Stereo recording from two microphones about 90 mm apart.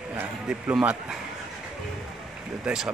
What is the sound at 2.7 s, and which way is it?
Speech, 10° right (ahead or behind).